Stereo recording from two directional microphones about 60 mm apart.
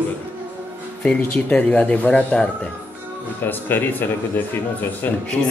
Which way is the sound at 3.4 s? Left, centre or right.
Left.